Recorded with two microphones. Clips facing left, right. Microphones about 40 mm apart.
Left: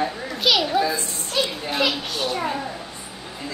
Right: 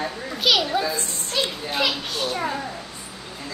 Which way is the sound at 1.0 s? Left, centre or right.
Right.